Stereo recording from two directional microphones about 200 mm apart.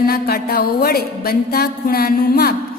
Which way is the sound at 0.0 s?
50° left (ahead or behind).